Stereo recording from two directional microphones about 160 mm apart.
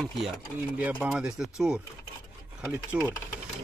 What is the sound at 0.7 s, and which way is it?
Speech, 10° right (ahead or behind).